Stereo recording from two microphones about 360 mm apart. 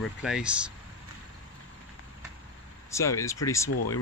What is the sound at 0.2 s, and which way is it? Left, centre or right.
Speech, centre.